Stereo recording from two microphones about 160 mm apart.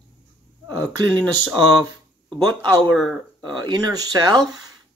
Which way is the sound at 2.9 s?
5° left (ahead or behind).